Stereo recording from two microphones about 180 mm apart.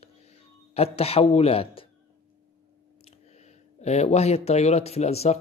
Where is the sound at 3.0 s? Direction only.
40° left (ahead or behind).